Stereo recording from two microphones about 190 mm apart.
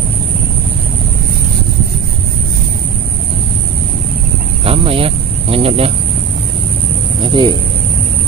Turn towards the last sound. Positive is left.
turn(degrees=-25)  # may be behind; listen again after turning